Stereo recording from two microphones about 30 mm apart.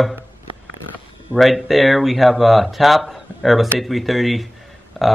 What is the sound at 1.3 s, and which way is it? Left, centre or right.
Speech, centre.